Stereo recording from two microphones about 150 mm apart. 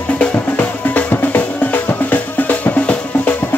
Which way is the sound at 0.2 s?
10° left (ahead or behind).